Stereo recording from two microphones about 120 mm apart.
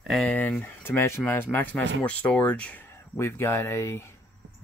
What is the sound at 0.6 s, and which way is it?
Speech, 15° left (ahead or behind).